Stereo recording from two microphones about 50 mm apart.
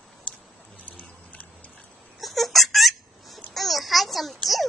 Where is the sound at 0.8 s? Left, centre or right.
Left.